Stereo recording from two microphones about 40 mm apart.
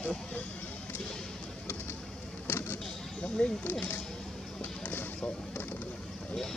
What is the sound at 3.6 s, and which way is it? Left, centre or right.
Speech, left.